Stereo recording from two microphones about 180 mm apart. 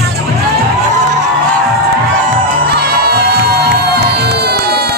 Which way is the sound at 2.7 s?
60° right (ahead or behind).